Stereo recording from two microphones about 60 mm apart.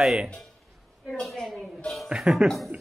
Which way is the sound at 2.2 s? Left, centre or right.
Centre.